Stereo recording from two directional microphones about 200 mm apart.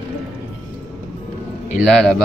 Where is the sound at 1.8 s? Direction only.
Centre (ahead or behind).